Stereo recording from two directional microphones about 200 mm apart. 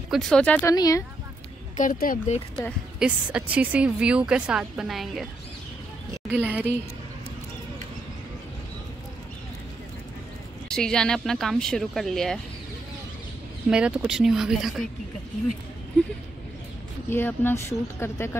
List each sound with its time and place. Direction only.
0.1 s a woman's voice: 5° left (ahead or behind)
0.7 s speech: 20° left (ahead or behind)
1.8 s speech: 40° left (ahead or behind)
3.0 s a woman's voice: 5° right (ahead or behind)
6.2 s speech: 10° right (ahead or behind)
10.7 s a woman's voice: 5° left (ahead or behind)
13.7 s a woman's voice: 5° right (ahead or behind)
17.1 s speech: 10° left (ahead or behind)